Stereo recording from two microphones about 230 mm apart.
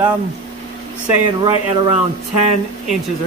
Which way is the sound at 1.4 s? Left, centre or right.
Right.